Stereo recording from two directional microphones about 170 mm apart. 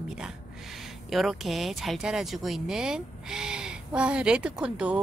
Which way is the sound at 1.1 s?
Centre (ahead or behind).